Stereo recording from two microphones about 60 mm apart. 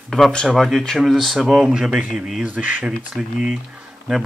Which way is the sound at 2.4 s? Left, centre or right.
Right.